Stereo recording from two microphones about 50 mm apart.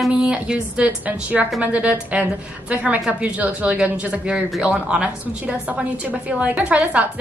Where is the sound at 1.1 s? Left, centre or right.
Right.